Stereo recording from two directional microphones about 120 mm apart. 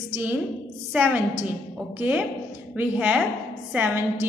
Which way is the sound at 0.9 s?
10° right (ahead or behind).